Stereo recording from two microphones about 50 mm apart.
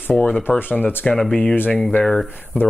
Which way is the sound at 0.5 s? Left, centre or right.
Left.